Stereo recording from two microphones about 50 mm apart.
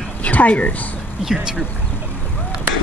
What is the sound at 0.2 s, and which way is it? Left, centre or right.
Speech, left.